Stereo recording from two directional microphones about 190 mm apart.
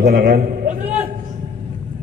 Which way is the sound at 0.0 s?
55° right (ahead or behind).